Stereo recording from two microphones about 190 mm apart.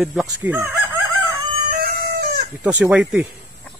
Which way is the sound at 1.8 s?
55° right (ahead or behind).